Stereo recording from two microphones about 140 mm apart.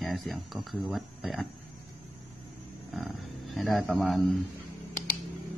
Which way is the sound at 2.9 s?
Centre (ahead or behind).